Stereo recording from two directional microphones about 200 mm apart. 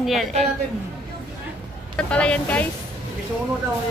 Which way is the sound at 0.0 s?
Centre (ahead or behind).